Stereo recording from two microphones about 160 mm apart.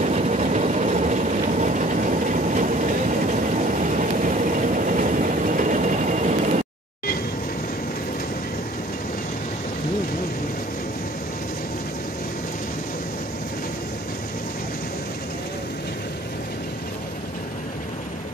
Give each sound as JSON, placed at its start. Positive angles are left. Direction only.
{"t": 0.0, "sound": "vehicle", "side_deg": -45}
{"t": 3.7, "sound": "vehicle", "side_deg": -55}